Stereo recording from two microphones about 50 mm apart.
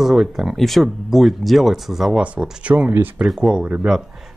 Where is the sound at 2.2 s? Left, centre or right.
Right.